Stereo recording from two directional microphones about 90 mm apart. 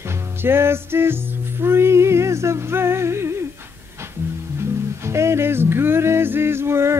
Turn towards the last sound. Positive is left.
turn(degrees=-30)  # may be behind; listen again after turning